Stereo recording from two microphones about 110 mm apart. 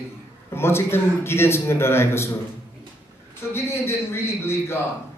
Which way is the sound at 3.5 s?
25° left (ahead or behind).